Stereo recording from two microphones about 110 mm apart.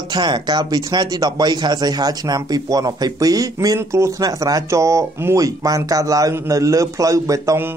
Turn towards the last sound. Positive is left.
turn(degrees=-30)  # may be behind; listen again after turning